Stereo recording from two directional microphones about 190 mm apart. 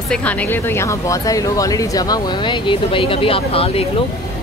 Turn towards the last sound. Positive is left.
turn(degrees=30)  # may be behind; listen again after turning